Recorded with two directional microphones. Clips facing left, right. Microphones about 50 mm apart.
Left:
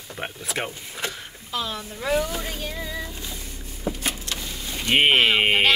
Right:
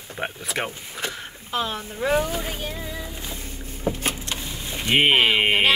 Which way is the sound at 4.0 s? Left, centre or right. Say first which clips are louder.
Right 2 dB; right.